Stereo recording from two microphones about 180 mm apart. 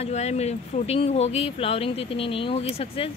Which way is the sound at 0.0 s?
35° left (ahead or behind).